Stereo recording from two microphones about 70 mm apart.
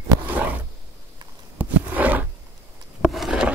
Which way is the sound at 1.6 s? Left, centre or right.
Right.